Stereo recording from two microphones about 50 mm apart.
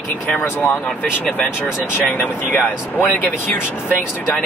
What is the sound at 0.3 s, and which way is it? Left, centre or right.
Speech, left.